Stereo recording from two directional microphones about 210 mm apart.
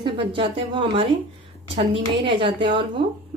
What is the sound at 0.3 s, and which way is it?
A woman's voice, 25° right (ahead or behind).